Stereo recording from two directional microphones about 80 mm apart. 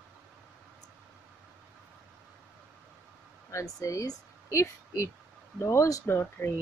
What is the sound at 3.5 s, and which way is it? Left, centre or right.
A woman's voice, left.